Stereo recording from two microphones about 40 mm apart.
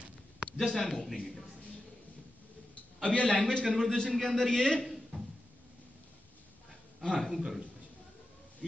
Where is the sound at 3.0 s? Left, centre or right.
Left.